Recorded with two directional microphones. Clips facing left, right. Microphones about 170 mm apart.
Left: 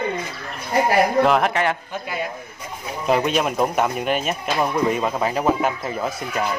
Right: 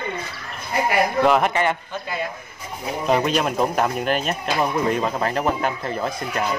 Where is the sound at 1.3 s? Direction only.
Centre (ahead or behind).